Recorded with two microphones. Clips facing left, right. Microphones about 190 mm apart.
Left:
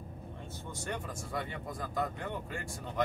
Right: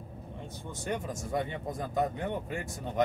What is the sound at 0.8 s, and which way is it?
Speech, 20° right (ahead or behind).